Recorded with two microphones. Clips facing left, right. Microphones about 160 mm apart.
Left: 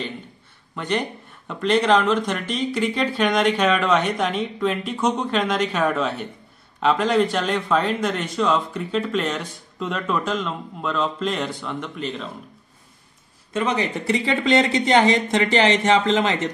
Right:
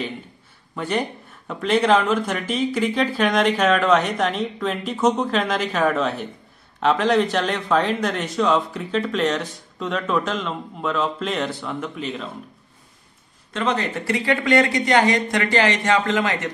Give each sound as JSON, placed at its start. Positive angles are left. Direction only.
{"t": 0.7, "sound": "speech", "side_deg": -5}
{"t": 13.5, "sound": "speech", "side_deg": 10}